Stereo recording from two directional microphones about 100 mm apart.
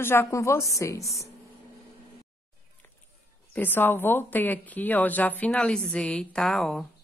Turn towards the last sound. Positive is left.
turn(degrees=5)  # may be behind; listen again after turning